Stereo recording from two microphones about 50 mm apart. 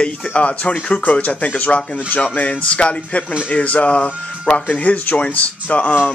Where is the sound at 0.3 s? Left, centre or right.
Left.